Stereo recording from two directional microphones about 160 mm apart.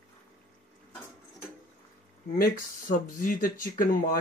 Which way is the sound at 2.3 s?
60° left (ahead or behind).